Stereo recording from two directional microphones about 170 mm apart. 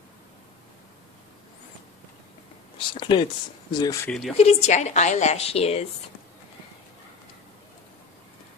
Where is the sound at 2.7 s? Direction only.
30° left (ahead or behind).